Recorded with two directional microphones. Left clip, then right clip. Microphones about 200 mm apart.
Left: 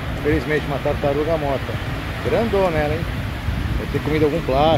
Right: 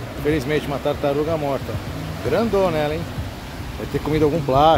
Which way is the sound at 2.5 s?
10° right (ahead or behind).